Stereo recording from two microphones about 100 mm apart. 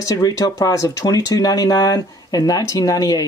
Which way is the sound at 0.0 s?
30° left (ahead or behind).